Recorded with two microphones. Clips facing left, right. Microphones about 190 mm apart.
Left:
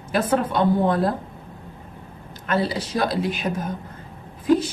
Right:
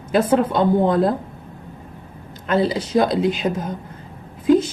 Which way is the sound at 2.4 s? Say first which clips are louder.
Right 4 dB; 25° right (ahead or behind).